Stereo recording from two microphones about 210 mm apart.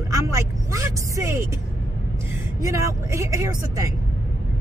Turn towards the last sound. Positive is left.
turn(degrees=-15)  # may be behind; listen again after turning